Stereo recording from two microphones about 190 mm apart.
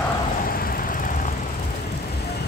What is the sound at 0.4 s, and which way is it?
Vehicle, 50° left (ahead or behind).